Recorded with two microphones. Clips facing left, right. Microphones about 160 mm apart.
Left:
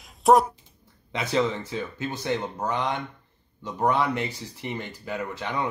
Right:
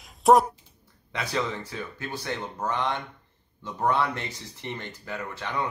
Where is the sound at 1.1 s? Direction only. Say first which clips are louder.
Left 5 dB; 20° left (ahead or behind).